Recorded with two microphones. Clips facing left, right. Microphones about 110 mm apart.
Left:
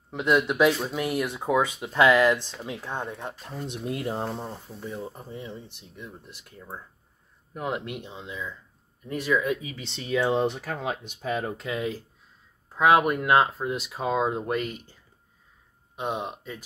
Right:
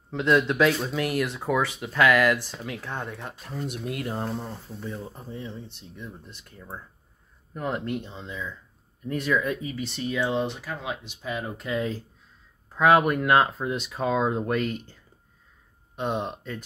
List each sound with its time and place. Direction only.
0.1 s speech: 15° left (ahead or behind)
4.7 s speech: 5° left (ahead or behind)
9.8 s speech: 25° left (ahead or behind)
10.4 s speech: 50° left (ahead or behind)
11.6 s speech: 15° left (ahead or behind)
12.7 s speech: 5° left (ahead or behind)
16.0 s speech: 5° left (ahead or behind)